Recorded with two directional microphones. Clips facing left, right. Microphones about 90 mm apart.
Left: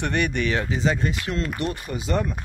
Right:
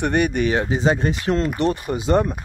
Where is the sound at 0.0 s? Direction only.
15° right (ahead or behind).